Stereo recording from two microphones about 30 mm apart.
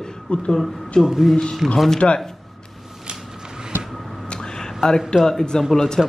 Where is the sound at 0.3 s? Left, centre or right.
Left.